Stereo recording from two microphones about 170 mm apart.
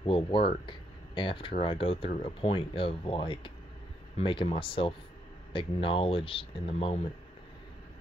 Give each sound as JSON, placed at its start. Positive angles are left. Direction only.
{"t": 0.0, "sound": "speech", "side_deg": 30}